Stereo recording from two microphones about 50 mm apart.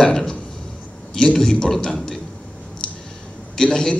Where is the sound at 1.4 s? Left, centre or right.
Centre.